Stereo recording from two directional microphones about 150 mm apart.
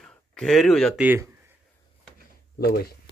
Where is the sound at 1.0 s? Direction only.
10° right (ahead or behind).